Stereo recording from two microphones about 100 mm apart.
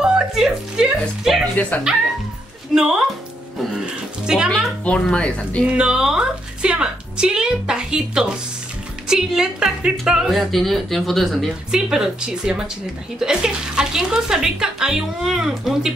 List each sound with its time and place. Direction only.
0.0 s music: 5° right (ahead or behind)
1.9 s a woman's voice: 10° right (ahead or behind)
4.8 s speech: 10° left (ahead or behind)
5.7 s a woman's voice: 10° right (ahead or behind)